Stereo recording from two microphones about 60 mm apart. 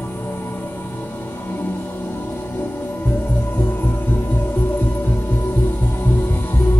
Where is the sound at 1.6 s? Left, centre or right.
Left.